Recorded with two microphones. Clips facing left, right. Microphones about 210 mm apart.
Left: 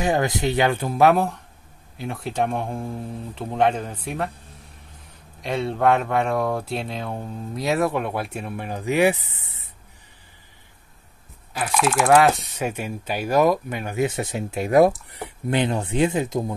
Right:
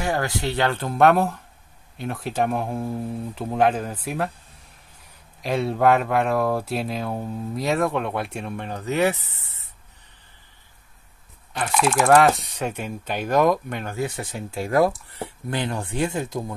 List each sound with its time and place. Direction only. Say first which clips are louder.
0.0 s speech: left 3 dB; 20° left (ahead or behind); by 4.3 s 5° right (ahead or behind)
5.4 s speech: right 1 dB; centre (ahead or behind)
11.5 s speech: even; 5° left (ahead or behind)
13.9 s speech: left 7 dB; 20° left (ahead or behind)